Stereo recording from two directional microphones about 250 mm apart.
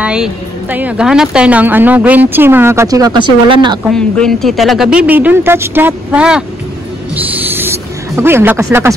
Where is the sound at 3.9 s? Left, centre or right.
Centre.